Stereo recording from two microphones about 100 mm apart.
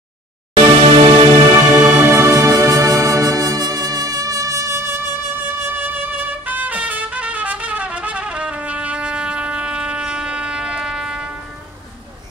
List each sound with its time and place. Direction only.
0.6 s music: 70° right (ahead or behind)
1.7 s music: 25° right (ahead or behind)
6.4 s trumpet: 15° right (ahead or behind)